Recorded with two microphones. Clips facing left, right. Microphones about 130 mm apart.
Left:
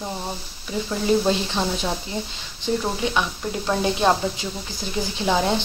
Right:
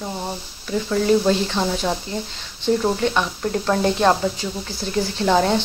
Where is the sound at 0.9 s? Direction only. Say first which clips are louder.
Right 3 dB; 10° left (ahead or behind).